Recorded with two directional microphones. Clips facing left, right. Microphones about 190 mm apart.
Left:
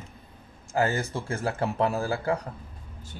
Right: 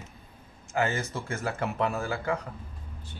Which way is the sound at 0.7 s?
35° left (ahead or behind).